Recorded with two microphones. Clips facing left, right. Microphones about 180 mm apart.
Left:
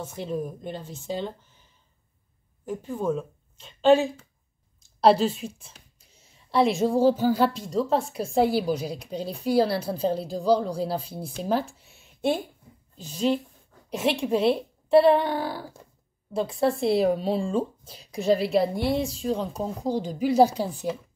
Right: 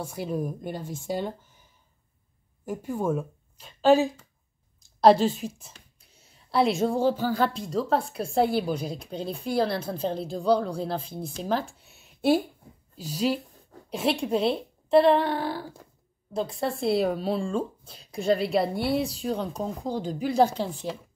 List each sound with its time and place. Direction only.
0.0 s speech: 10° right (ahead or behind)
2.6 s speech: 10° right (ahead or behind)
3.9 s a woman's voice: centre (ahead or behind)
5.2 s a sound: centre (ahead or behind)
7.0 s a sound: 35° left (ahead or behind)
7.3 s a woman's voice: centre (ahead or behind)
16.5 s a woman's voice: centre (ahead or behind)